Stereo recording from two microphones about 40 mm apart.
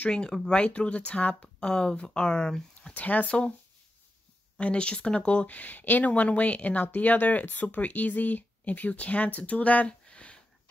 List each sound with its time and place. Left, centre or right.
0.1 s speech: left
0.6 s speech: left
1.6 s speech: left
2.9 s speech: left
4.6 s speech: left
5.6 s speech: left
10.0 s a sound: left